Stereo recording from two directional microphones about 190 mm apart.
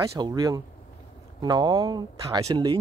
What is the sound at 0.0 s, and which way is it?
Speech, 20° right (ahead or behind).